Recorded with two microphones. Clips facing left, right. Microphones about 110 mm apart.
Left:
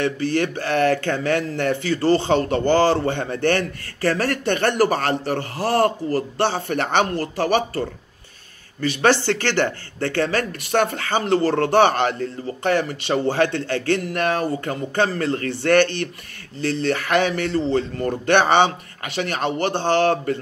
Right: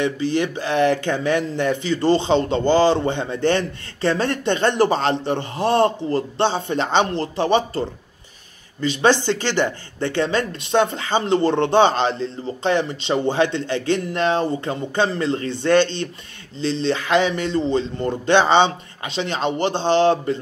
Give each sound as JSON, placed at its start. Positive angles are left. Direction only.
{"t": 0.4, "sound": "speech", "side_deg": -15}
{"t": 8.8, "sound": "speech", "side_deg": -20}